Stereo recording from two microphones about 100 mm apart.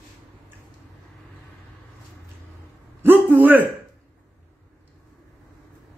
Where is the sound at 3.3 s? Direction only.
15° right (ahead or behind).